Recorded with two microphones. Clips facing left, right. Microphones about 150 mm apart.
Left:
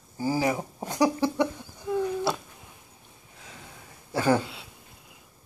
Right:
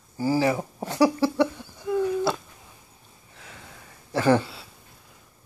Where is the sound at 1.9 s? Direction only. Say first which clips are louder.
Right 3 dB; 5° left (ahead or behind).